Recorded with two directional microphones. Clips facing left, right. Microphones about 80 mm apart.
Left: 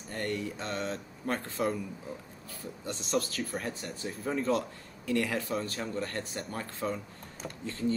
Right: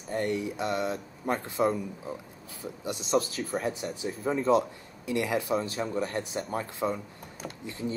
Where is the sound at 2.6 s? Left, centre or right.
Centre.